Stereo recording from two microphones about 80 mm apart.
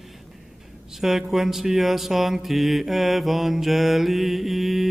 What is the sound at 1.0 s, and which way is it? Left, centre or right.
Speech, centre.